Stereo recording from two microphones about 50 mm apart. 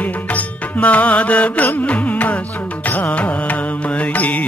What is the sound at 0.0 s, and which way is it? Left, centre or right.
Music, left.